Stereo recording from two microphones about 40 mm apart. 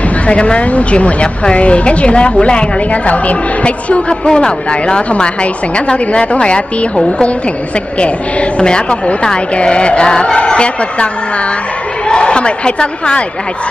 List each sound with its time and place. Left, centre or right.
0.3 s a woman's voice: left
12.1 s a woman's voice: left